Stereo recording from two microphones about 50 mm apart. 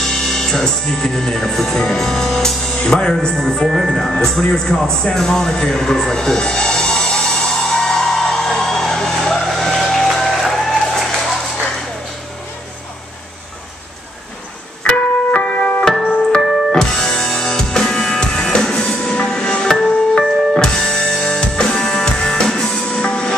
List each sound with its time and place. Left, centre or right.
0.0 s music: centre
3.9 s a man's voice: centre
7.8 s music: centre
14.8 s music: centre
16.3 s music: centre